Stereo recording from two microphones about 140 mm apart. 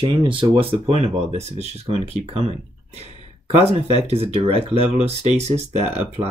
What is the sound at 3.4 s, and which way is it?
Speech, 45° right (ahead or behind).